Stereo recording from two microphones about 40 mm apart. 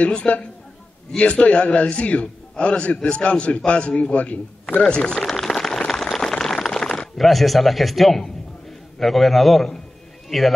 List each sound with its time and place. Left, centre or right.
0.0 s a man's voice: left
4.8 s a man's voice: left
5.2 s rain on surface: centre
5.9 s a sound: centre
7.2 s a man's voice: centre